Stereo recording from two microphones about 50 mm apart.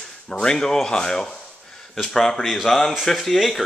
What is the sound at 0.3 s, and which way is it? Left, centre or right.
Speech, centre.